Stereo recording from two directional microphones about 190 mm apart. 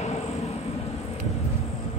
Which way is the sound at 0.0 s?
35° left (ahead or behind).